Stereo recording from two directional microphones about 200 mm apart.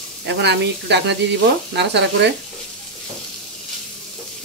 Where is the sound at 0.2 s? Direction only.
60° right (ahead or behind).